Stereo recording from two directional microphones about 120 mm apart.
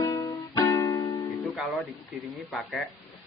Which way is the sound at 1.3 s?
Centre (ahead or behind).